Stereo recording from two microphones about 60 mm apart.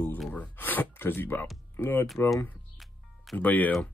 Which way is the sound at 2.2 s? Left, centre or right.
Centre.